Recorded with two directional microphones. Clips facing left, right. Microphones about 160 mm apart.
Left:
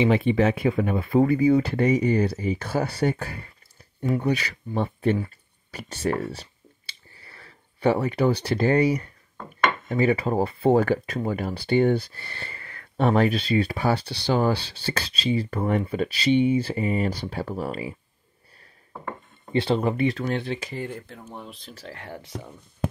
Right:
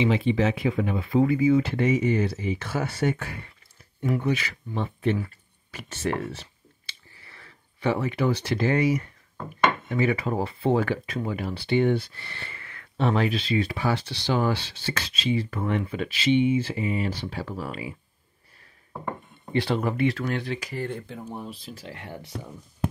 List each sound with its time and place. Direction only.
0.0 s speech: 55° left (ahead or behind); by 17.9 s 35° left (ahead or behind)
19.5 s speech: 25° left (ahead or behind)
20.8 s speech: 5° left (ahead or behind)